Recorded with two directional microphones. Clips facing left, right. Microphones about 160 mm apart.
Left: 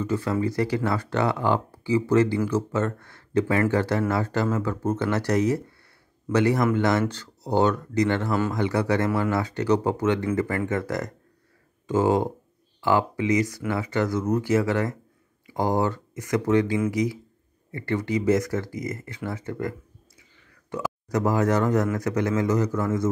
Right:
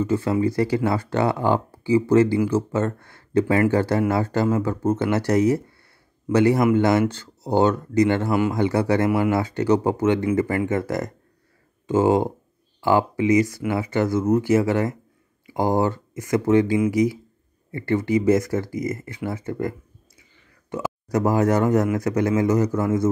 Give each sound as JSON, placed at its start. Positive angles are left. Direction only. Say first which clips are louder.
{"t": 0.0, "sound": "speech", "louder": "right 4 dB", "side_deg": -25}
{"t": 8.3, "sound": "speech", "louder": "right 4 dB", "side_deg": -15}
{"t": 8.5, "sound": "speech", "louder": "right 3 dB", "side_deg": -25}
{"t": 9.0, "sound": "speech", "louder": "right 4 dB", "side_deg": -10}
{"t": 9.3, "sound": "speech", "louder": "right 3 dB", "side_deg": -25}
{"t": 21.1, "sound": "speech", "louder": "right 3 dB", "side_deg": -25}